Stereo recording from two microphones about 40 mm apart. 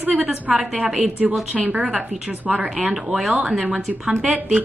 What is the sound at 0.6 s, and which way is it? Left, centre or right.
Speech, centre.